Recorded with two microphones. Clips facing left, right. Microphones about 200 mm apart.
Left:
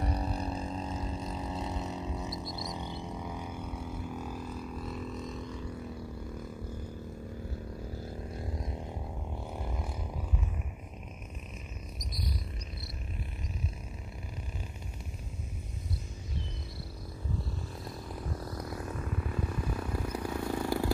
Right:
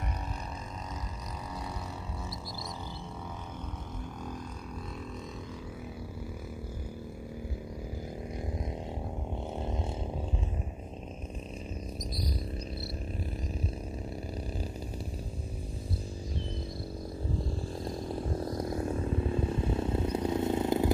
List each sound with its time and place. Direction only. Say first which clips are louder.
0.0 s vehicle: left 6 dB; 35° left (ahead or behind)
1.5 s vehicle: left 4 dB; 20° left (ahead or behind)
17.8 s vehicle: right 7 dB; 30° right (ahead or behind)